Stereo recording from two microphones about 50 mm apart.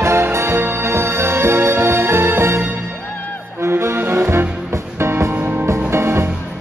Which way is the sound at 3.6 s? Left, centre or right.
Right.